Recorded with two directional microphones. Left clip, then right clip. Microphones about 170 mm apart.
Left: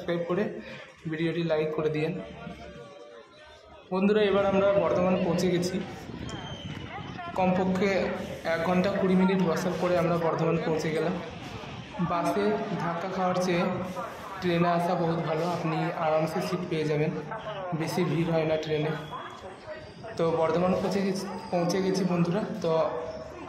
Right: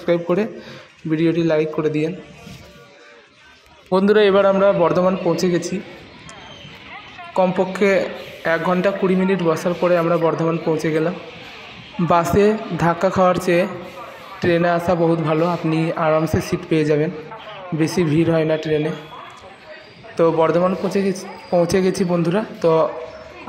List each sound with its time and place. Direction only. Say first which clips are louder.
0.0 s a man's voice: right 10 dB; 40° right (ahead or behind)
3.9 s a man's voice: right 10 dB; 40° right (ahead or behind)
5.0 s a man's voice: right 8 dB; 35° right (ahead or behind)
7.3 s a man's voice: right 9 dB; 40° right (ahead or behind)
12.1 s a man's voice: right 12 dB; 45° right (ahead or behind)
20.2 s a man's voice: right 10 dB; 40° right (ahead or behind)